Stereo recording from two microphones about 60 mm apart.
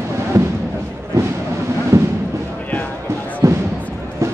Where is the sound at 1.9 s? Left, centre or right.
Right.